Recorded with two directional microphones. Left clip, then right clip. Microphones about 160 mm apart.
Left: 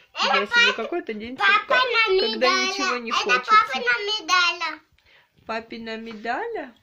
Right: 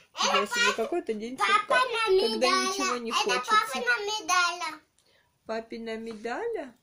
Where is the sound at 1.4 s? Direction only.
80° right.